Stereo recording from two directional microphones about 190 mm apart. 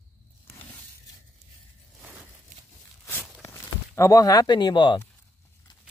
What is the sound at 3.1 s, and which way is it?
Zipper, 10° left (ahead or behind).